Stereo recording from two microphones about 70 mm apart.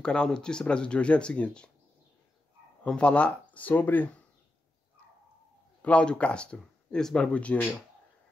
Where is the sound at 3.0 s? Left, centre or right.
Centre.